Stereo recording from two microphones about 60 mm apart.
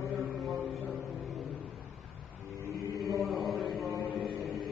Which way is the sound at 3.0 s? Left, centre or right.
Right.